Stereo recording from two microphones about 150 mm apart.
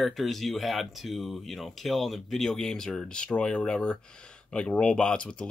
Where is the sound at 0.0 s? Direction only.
Centre (ahead or behind).